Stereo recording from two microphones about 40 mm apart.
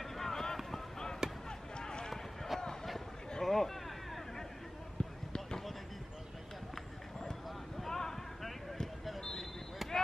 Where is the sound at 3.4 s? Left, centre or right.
Centre.